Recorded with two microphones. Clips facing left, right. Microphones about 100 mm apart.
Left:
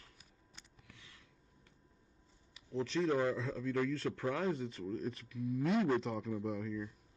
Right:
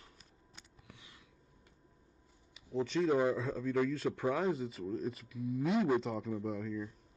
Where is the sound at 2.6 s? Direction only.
5° right (ahead or behind).